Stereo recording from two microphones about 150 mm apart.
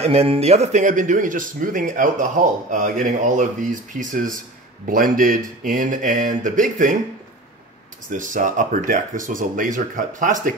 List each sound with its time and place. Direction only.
0.0 s speech: 40° right (ahead or behind); by 7.0 s 60° right (ahead or behind)
8.1 s speech: 60° right (ahead or behind)